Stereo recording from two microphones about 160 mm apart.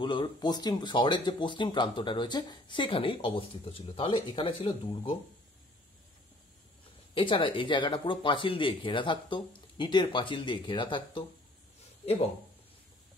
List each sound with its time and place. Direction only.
0.0 s speech: 30° left (ahead or behind)
7.2 s speech: 30° left (ahead or behind)